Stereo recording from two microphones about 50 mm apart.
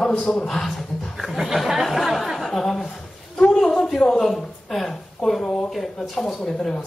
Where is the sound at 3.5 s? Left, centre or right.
Centre.